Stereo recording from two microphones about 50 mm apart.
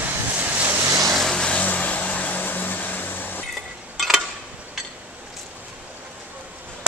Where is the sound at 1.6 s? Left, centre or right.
Left.